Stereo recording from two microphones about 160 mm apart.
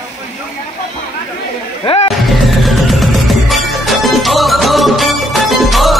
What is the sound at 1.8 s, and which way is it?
Music, 35° left (ahead or behind).